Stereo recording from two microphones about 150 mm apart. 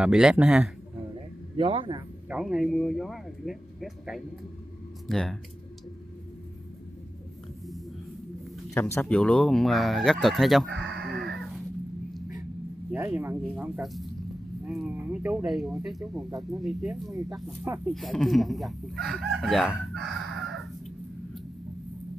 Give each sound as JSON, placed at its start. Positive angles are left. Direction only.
{"t": 0.0, "sound": "speech", "side_deg": -5}
{"t": 1.6, "sound": "a man's voice", "side_deg": -35}
{"t": 2.2, "sound": "speech", "side_deg": -5}
{"t": 8.7, "sound": "speech", "side_deg": 15}
{"t": 10.8, "sound": "a sound", "side_deg": 0}
{"t": 12.9, "sound": "speech", "side_deg": -15}
{"t": 16.0, "sound": "speech", "side_deg": -25}
{"t": 16.6, "sound": "speech", "side_deg": 0}
{"t": 17.1, "sound": "speech", "side_deg": -20}
{"t": 17.8, "sound": "speech", "side_deg": 0}